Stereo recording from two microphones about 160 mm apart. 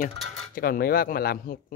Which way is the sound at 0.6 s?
65° left (ahead or behind).